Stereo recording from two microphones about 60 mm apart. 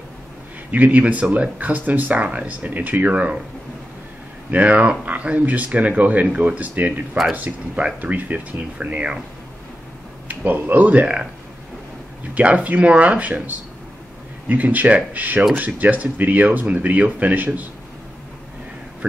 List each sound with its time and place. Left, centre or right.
0.7 s speech: right
4.5 s speech: right
10.2 s speech: right
12.4 s speech: right